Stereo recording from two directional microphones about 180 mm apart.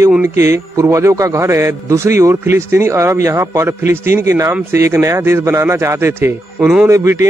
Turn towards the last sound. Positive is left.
turn(degrees=-15)  # may be behind; listen again after turning